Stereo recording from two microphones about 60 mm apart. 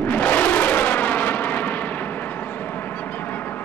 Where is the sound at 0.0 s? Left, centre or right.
Left.